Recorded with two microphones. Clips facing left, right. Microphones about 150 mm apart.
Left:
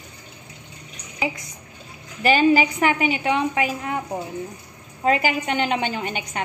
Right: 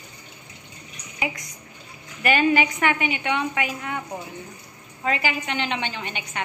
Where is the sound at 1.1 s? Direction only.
30° left (ahead or behind).